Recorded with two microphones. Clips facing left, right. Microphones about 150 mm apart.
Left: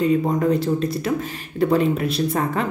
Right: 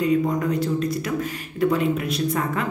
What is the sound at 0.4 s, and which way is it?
Speech, 30° left (ahead or behind).